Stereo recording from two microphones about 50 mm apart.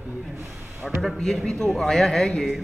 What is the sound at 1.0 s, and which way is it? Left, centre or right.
Speech, centre.